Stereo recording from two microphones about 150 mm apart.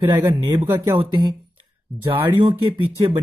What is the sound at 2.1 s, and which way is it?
Speech, 35° right (ahead or behind).